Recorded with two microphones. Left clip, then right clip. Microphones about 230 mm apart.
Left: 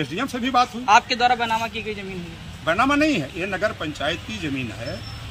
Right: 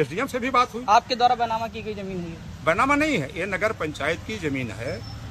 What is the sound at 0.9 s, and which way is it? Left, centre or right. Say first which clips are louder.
A man's voice: left 2 dB; right.